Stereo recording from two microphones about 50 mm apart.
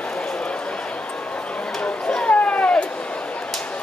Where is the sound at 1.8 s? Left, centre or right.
Left.